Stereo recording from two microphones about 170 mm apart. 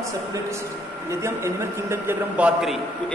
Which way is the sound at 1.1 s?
15° right (ahead or behind).